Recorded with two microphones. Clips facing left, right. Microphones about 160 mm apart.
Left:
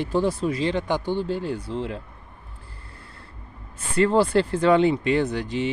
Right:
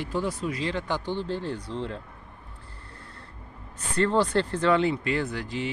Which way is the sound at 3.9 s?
10° left (ahead or behind).